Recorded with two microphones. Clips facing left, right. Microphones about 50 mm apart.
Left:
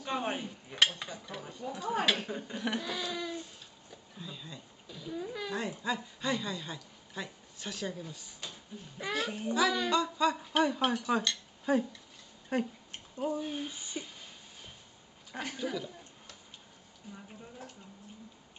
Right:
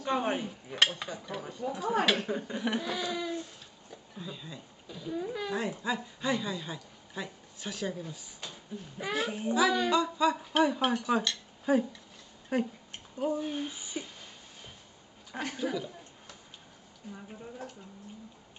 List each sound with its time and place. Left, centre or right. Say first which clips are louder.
0.0 s speech: right 4 dB; centre
15.3 s a sound: right 3 dB; centre
17.1 s speech: right 4 dB; centre